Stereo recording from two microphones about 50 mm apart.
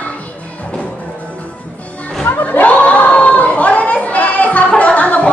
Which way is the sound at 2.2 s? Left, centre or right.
Left.